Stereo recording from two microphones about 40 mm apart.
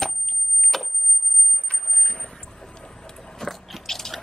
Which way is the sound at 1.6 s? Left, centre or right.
Left.